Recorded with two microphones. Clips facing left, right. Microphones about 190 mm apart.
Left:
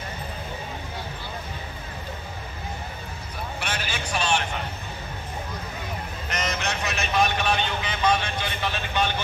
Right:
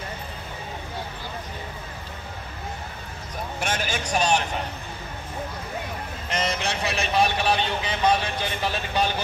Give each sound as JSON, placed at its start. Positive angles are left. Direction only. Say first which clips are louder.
{"t": 3.5, "sound": "vehicle", "louder": "right 5 dB", "side_deg": -45}
{"t": 6.3, "sound": "vehicle", "louder": "right 2 dB", "side_deg": -30}